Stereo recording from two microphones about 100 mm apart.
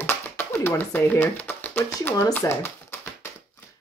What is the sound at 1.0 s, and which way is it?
Speech, 20° left (ahead or behind).